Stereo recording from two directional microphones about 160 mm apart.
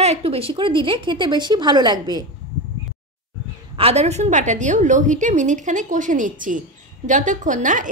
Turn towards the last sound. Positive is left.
turn(degrees=-55)  # may be behind; listen again after turning